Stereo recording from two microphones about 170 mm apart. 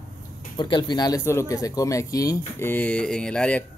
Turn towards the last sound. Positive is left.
turn(degrees=5)  # may be behind; listen again after turning